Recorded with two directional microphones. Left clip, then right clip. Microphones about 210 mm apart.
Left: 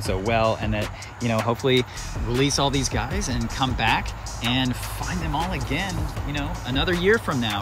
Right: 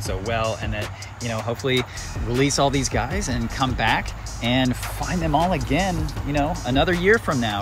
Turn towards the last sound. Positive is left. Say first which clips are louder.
# right 2 dB
turn(degrees=10)  # may be behind; listen again after turning